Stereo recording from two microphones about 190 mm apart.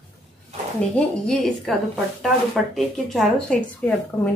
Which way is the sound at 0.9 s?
5° left (ahead or behind).